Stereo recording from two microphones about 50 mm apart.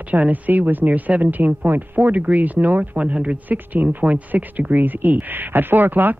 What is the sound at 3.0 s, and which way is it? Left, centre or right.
Speech, right.